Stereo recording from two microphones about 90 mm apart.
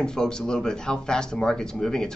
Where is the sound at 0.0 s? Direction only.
10° left (ahead or behind).